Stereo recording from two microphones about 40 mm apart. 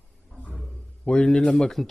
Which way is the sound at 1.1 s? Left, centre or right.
Left.